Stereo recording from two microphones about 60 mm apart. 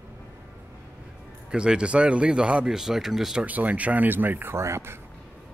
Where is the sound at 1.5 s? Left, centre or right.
Centre.